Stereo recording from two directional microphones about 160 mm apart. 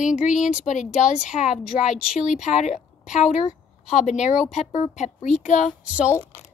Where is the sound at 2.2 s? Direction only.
45° left (ahead or behind).